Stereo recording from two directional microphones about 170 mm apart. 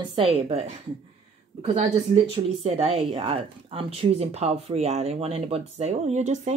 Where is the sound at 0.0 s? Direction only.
35° right (ahead or behind).